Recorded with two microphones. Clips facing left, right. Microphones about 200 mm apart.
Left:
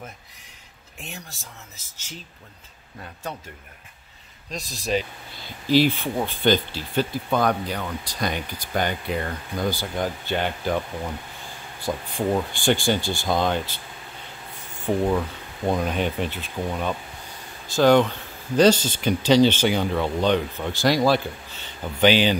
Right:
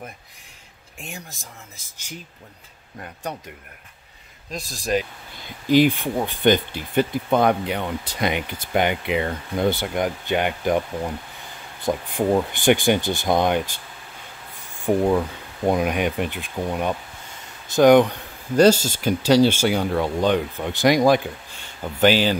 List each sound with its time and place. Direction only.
1.0 s speech: 15° right (ahead or behind)
4.5 s speech: 10° right (ahead or behind)
12.2 s speech: 20° right (ahead or behind)
14.9 s speech: 10° right (ahead or behind)